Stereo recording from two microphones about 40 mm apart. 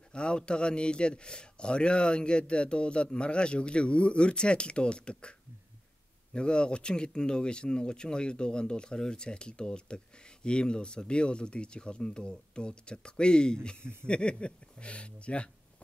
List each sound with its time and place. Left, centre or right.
0.1 s speech: left
6.3 s speech: left